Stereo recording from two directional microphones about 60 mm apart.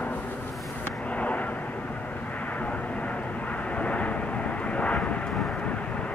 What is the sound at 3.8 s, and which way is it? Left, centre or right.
Vehicle, left.